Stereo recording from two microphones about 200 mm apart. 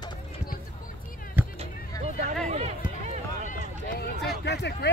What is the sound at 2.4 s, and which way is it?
Run, 35° right (ahead or behind).